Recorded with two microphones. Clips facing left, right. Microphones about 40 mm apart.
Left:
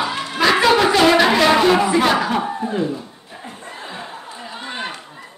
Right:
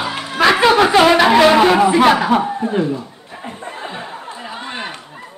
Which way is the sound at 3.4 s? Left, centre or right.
Right.